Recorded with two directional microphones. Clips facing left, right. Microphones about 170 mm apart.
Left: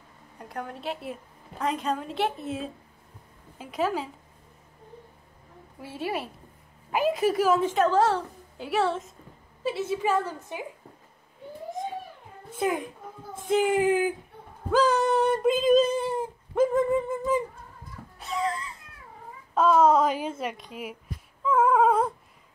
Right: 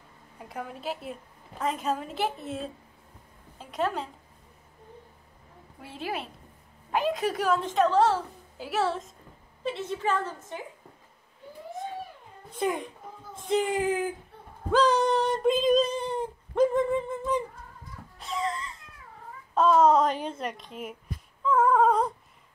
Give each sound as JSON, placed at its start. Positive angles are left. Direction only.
{"t": 0.4, "sound": "a woman's voice", "side_deg": -5}
{"t": 5.8, "sound": "a woman's voice", "side_deg": 0}
{"t": 12.4, "sound": "a child's voice", "side_deg": 5}
{"t": 14.7, "sound": "female singing", "side_deg": 5}
{"t": 18.2, "sound": "a sound", "side_deg": 0}
{"t": 19.5, "sound": "a woman's voice", "side_deg": 0}
{"t": 21.5, "sound": "a sound", "side_deg": 10}